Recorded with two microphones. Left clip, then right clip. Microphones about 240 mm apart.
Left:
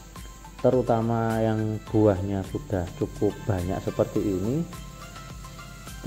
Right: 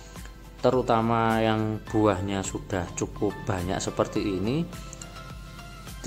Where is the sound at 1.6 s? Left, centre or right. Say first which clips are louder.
Left 1 dB; centre.